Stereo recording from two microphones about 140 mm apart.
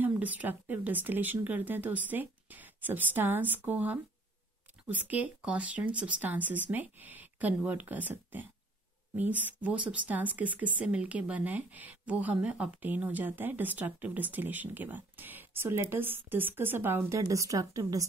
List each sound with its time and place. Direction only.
0.0 s a woman's voice: 10° right (ahead or behind)